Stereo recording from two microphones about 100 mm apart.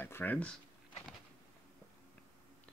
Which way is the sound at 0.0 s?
20° left (ahead or behind).